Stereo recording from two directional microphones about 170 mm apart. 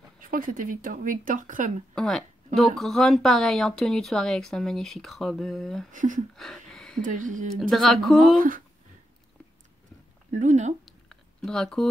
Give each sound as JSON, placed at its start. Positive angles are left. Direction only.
{"t": 0.2, "sound": "speech", "side_deg": -55}
{"t": 2.0, "sound": "speech", "side_deg": 0}
{"t": 5.9, "sound": "speech", "side_deg": -50}
{"t": 6.3, "sound": "a sound", "side_deg": 5}
{"t": 7.0, "sound": "speech", "side_deg": -50}
{"t": 7.7, "sound": "speech", "side_deg": 0}
{"t": 8.4, "sound": "speech", "side_deg": -55}
{"t": 10.3, "sound": "speech", "side_deg": -45}
{"t": 10.9, "sound": "a sound", "side_deg": 5}